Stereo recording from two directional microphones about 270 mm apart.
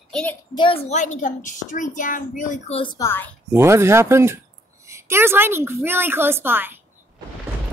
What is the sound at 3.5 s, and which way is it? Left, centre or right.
A woman's voice, centre.